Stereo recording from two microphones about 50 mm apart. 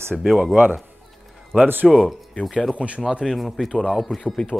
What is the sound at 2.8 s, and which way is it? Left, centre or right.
Speech, right.